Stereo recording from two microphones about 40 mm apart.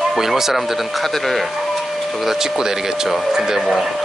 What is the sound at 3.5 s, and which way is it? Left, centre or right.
Speech, centre.